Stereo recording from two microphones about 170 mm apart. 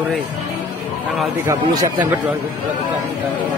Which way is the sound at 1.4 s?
20° right (ahead or behind).